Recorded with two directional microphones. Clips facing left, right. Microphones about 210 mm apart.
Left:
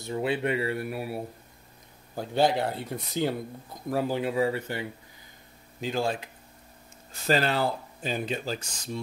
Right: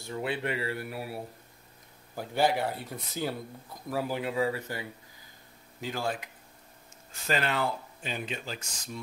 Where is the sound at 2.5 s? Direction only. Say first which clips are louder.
Left 3 dB; 20° left (ahead or behind).